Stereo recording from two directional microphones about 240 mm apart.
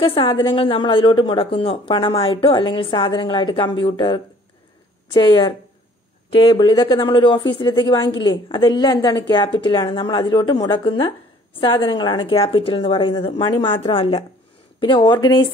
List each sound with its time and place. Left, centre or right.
0.0 s speech: left